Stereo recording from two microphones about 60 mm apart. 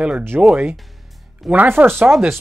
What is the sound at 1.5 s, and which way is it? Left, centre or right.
Speech, right.